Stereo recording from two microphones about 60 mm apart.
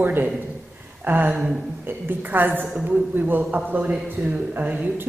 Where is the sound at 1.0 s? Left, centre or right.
Right.